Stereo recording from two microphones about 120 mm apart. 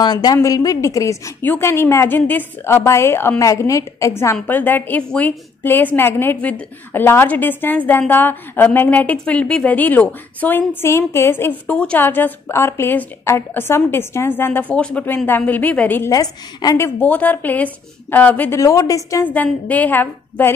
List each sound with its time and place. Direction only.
0.0 s a woman's voice: 35° left (ahead or behind); by 16.1 s 15° left (ahead or behind)
16.1 s a woman's voice: 30° left (ahead or behind); by 18.6 s 15° left (ahead or behind)
18.6 s a woman's voice: 30° left (ahead or behind)
19.2 s a woman's voice: 15° left (ahead or behind)